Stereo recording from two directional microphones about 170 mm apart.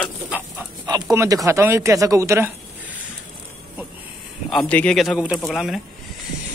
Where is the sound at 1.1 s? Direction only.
20° right (ahead or behind).